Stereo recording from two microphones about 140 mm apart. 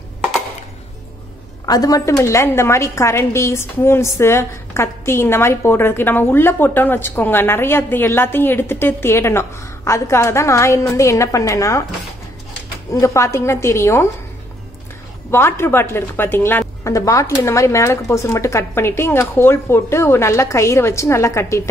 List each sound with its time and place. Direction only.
1.7 s a woman's voice: 25° left (ahead or behind)
12.9 s a woman's voice: 20° left (ahead or behind)
15.3 s a woman's voice: 15° left (ahead or behind)